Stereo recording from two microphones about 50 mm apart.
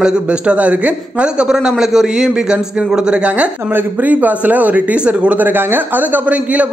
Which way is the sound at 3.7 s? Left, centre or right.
Right.